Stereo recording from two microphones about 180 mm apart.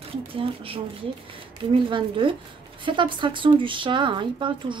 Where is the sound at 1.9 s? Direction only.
30° right (ahead or behind).